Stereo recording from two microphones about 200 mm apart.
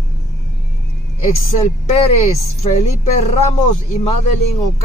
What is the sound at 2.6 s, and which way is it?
Speech, 35° left (ahead or behind).